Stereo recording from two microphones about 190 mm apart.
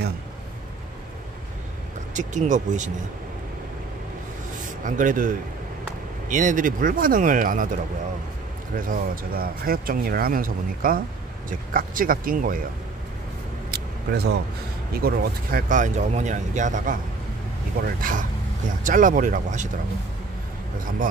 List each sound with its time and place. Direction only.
2.1 s speech: 40° right (ahead or behind)
4.6 s speech: 45° right (ahead or behind)
13.7 s vehicle: 60° right (ahead or behind)
14.9 s speech: 55° right (ahead or behind)